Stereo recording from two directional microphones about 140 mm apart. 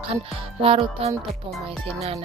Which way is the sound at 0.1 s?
45° right (ahead or behind).